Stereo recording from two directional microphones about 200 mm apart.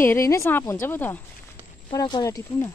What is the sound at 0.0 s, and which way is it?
A woman's voice, 15° left (ahead or behind).